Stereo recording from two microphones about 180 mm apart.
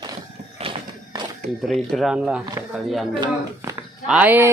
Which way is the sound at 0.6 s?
25° right (ahead or behind).